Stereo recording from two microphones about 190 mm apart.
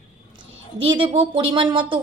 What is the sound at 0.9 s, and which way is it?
A woman's voice, 25° right (ahead or behind).